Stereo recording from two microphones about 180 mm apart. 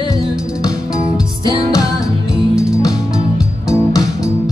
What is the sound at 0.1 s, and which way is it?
Music, 20° left (ahead or behind).